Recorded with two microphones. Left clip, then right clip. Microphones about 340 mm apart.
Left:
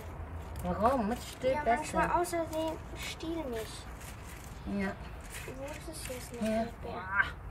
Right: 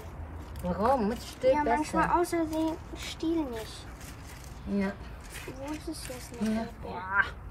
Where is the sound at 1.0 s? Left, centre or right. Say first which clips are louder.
Right 5 dB; centre.